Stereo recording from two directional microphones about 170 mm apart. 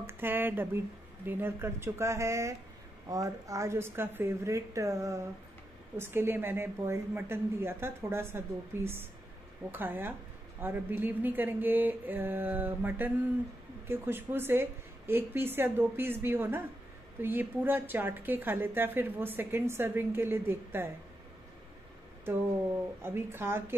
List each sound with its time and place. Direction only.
0.0 s a woman's voice: 10° right (ahead or behind)
23.0 s a woman's voice: 15° right (ahead or behind)